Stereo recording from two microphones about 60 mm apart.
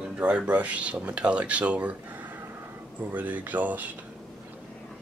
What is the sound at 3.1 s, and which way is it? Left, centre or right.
Speech, right.